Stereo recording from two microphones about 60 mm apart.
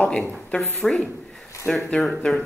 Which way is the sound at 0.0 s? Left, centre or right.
Left.